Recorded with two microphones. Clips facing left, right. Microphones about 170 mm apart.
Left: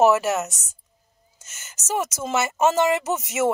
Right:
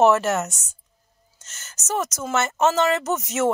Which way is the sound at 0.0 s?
5° left (ahead or behind).